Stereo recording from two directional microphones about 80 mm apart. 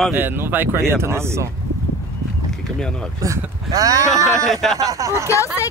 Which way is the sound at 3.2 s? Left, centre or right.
Right.